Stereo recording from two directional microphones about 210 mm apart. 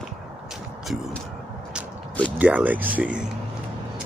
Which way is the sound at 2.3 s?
5° right (ahead or behind).